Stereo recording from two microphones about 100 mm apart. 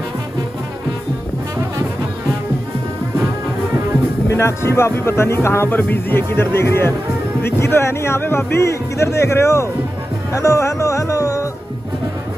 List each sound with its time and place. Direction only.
4.3 s speech: 25° left (ahead or behind)